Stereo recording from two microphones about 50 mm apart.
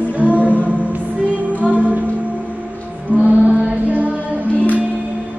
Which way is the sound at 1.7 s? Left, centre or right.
Right.